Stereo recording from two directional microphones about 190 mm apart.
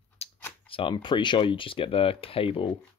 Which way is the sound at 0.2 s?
35° left (ahead or behind).